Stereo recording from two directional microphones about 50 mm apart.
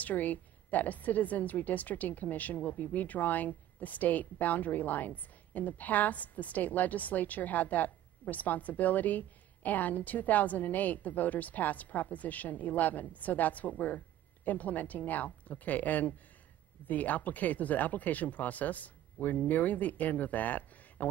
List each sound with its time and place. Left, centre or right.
0.0 s a woman's voice: left